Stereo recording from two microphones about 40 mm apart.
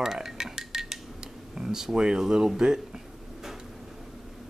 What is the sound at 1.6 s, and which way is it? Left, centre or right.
Speech, centre.